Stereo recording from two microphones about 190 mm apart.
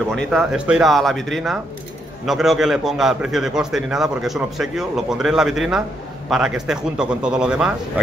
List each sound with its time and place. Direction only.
0.1 s a man's voice: centre (ahead or behind)